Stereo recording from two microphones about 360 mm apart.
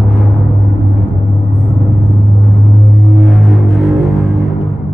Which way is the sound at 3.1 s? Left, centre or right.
Centre.